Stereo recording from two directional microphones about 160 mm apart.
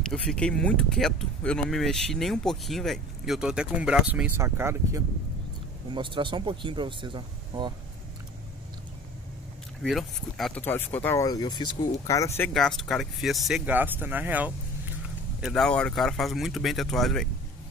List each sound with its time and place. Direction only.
0.0 s speech: 5° left (ahead or behind); by 5.0 s 15° right (ahead or behind)
5.9 s speech: 30° right (ahead or behind)
9.8 s speech: centre (ahead or behind)
10.6 s speech: 10° left (ahead or behind)
12.5 s speech: centre (ahead or behind)
13.7 s speech: 10° right (ahead or behind)
15.4 s speech: 5° left (ahead or behind)